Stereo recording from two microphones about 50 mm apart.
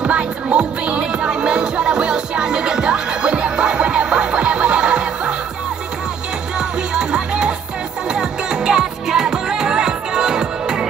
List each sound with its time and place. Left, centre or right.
0.0 s music: right
6.9 s music: centre